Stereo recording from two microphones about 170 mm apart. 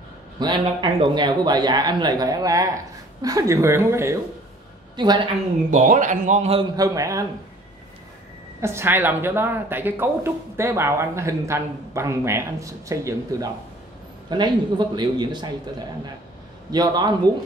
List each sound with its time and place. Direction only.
0.4 s speech: 25° right (ahead or behind)
4.9 s speech: 25° right (ahead or behind)
5.7 s a man's voice: 45° right (ahead or behind)
6.8 s speech: 20° right (ahead or behind)
8.5 s speech: 15° right (ahead or behind)
16.7 s speech: 25° right (ahead or behind)